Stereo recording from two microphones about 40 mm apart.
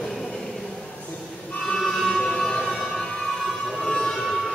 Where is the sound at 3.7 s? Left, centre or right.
Centre.